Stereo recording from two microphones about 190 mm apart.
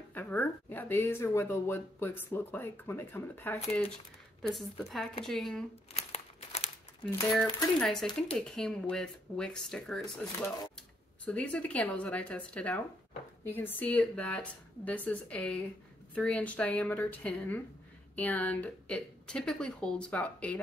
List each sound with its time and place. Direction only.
0.1 s speech: 10° left (ahead or behind)
5.9 s crumpling: 35° left (ahead or behind)
7.8 s speech: 5° left (ahead or behind)
11.2 s speech: 5° left (ahead or behind)